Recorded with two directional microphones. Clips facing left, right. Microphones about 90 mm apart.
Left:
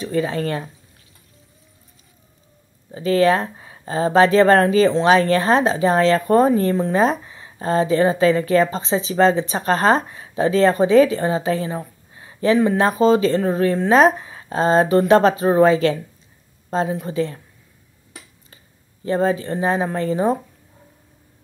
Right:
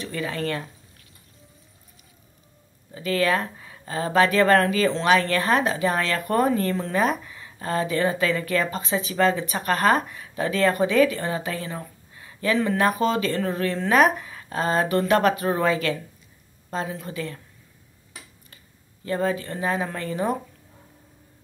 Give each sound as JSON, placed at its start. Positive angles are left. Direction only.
{"t": 0.0, "sound": "speech", "side_deg": 25}
{"t": 2.9, "sound": "speech", "side_deg": 25}
{"t": 19.0, "sound": "speech", "side_deg": 25}